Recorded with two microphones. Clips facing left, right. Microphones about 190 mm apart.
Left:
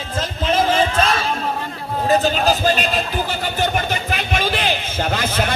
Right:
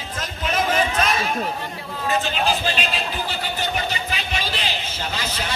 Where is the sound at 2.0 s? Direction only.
40° left (ahead or behind).